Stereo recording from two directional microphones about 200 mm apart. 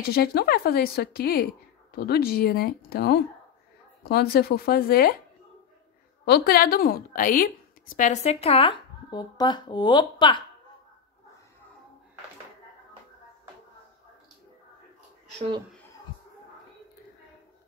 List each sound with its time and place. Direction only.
0.0 s speech: 50° left (ahead or behind)
6.2 s a woman's voice: 50° left (ahead or behind); by 10.4 s 25° left (ahead or behind)